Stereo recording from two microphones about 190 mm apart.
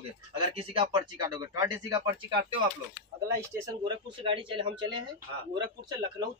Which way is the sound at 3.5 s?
25° right (ahead or behind).